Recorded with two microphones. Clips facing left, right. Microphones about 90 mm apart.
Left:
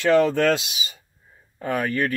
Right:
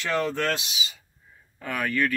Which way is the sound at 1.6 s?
45° left (ahead or behind).